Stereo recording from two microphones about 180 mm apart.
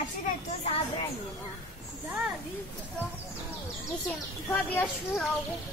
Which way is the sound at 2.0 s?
5° right (ahead or behind).